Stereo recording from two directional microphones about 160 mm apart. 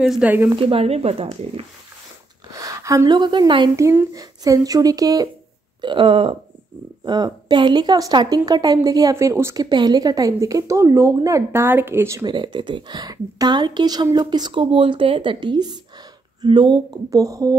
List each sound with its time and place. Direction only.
0.0 s speech: 10° right (ahead or behind)
0.5 s speech: 35° right (ahead or behind)
2.5 s speech: 20° right (ahead or behind)
3.7 s a woman's voice: 20° right (ahead or behind)